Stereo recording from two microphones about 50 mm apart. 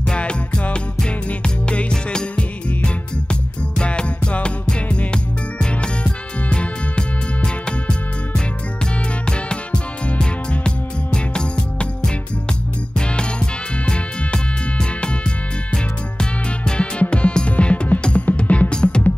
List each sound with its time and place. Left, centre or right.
0.1 s music: left
9.2 s music: centre
13.1 s music: centre
15.7 s music: centre